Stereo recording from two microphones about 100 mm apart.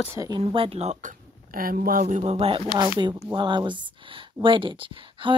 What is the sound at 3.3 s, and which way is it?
Speech, 50° right (ahead or behind).